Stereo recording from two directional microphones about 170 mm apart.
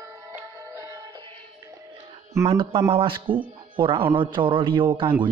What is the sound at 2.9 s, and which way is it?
A man's voice, 30° right (ahead or behind).